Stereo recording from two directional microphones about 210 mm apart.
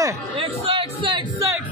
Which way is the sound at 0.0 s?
25° right (ahead or behind).